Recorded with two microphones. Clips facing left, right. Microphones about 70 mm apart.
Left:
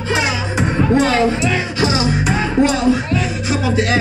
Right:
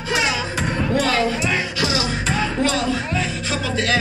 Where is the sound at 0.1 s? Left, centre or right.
Left.